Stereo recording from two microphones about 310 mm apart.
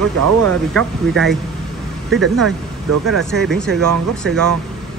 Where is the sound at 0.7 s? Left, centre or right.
Centre.